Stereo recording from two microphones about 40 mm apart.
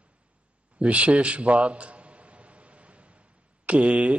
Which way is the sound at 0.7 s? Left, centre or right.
Right.